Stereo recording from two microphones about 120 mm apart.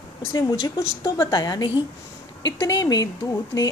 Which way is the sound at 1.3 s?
35° left (ahead or behind).